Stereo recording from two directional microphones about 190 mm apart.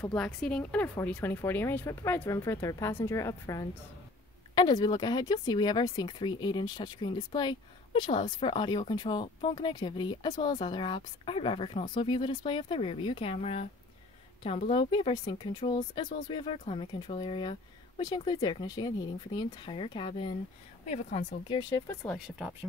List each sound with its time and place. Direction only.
0.0 s speech: 5° left (ahead or behind)
22.2 s speech: 5° right (ahead or behind)